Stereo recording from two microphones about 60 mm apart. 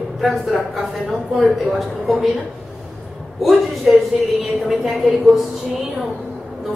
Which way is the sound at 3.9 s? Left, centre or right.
Centre.